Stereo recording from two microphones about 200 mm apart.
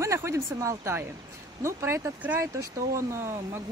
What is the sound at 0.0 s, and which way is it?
Speech, 15° right (ahead or behind).